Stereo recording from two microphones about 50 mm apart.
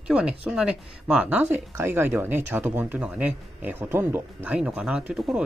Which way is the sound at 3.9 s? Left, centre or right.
Right.